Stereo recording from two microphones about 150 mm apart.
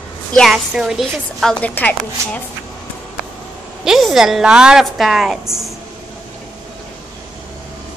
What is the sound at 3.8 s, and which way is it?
A woman's voice, centre (ahead or behind).